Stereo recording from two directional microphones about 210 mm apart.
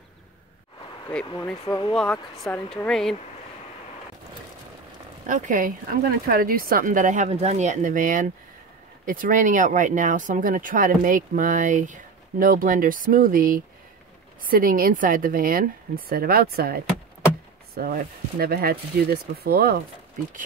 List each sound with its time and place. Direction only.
1.7 s speech: 20° left (ahead or behind)
2.4 s speech: 5° left (ahead or behind)
5.2 s speech: 35° right (ahead or behind)